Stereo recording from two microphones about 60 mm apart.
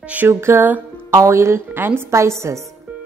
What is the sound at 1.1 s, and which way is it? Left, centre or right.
A woman's voice, right.